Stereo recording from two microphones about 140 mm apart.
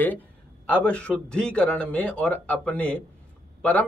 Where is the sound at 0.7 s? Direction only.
10° left (ahead or behind).